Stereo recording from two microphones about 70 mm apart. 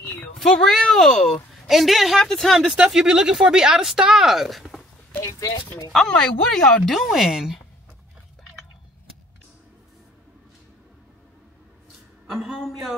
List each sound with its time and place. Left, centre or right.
0.0 s a sound: left
0.4 s a woman's voice: centre
2.6 s speech: centre
5.9 s a woman's voice: centre
12.3 s a woman's voice: centre